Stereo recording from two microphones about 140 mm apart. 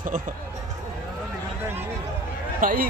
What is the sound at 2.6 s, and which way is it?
Speech, 80° right.